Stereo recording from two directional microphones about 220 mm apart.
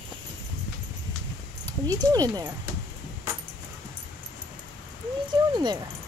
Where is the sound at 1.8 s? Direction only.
15° right (ahead or behind).